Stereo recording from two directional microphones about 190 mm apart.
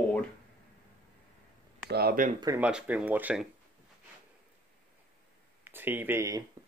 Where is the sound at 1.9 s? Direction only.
55° right (ahead or behind).